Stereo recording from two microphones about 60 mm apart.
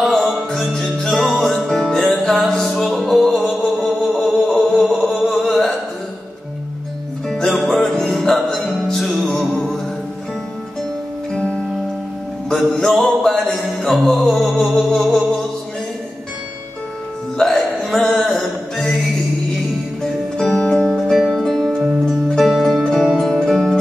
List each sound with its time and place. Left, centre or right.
0.0 s music: centre
4.0 s a sound: centre
4.4 s mantra: centre
7.2 s music: centre
11.3 s music: centre
12.4 s music: centre
17.4 s music: centre
20.0 s music: centre
21.0 s music: centre